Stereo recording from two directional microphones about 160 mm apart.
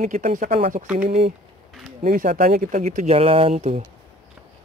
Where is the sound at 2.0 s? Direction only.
50° right (ahead or behind).